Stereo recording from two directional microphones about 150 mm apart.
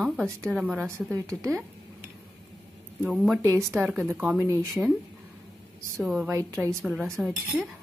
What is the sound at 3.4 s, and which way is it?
A woman's voice, 15° right (ahead or behind).